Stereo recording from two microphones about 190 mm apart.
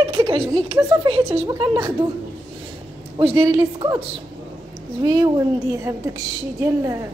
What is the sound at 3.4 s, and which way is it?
Speech, 20° right (ahead or behind).